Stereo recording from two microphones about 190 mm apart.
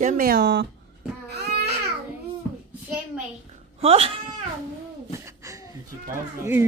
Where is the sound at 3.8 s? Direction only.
30° right (ahead or behind).